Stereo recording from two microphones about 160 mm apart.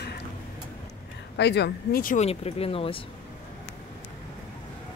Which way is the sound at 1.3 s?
90° left.